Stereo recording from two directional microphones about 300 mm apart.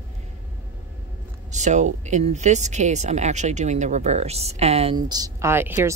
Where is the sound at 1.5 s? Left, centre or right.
Right.